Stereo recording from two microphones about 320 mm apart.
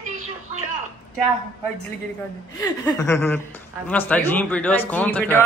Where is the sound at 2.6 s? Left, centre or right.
Centre.